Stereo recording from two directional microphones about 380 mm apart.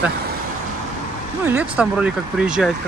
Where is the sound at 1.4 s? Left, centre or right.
Centre.